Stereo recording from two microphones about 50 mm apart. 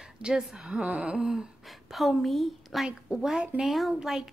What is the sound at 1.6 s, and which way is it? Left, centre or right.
A woman's voice, centre.